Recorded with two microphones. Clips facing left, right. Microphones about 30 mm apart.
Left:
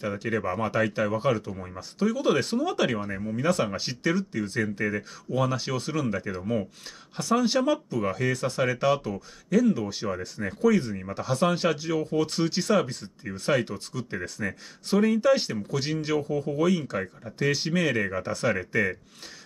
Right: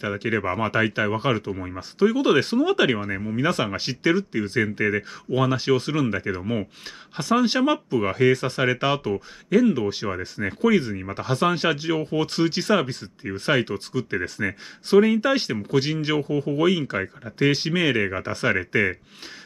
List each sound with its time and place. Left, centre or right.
0.0 s speech: right